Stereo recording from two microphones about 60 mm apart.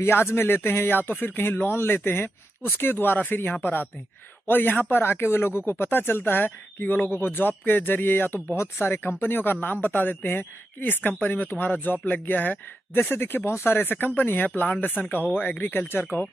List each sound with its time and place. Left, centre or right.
0.0 s speech: left
13.1 s speech: left